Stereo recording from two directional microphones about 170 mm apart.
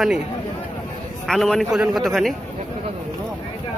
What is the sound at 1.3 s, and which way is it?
A man's voice, centre (ahead or behind).